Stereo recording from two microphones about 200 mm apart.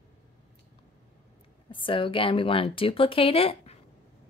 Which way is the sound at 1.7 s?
25° left (ahead or behind).